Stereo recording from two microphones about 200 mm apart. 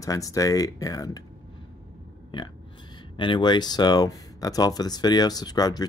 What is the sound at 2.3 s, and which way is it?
Speech, 20° left (ahead or behind).